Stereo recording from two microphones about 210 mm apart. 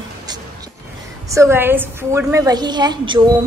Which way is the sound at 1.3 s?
10° right (ahead or behind).